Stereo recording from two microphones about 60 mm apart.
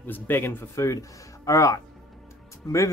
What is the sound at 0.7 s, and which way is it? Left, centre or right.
Speech, left.